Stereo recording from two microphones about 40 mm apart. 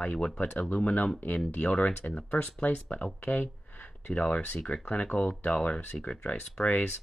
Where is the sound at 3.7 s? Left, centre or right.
Left.